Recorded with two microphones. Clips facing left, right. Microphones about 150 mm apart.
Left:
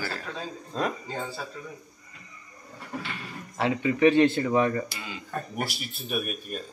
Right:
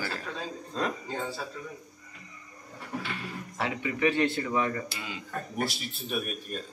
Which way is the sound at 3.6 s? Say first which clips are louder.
Left 7 dB; 30° left (ahead or behind).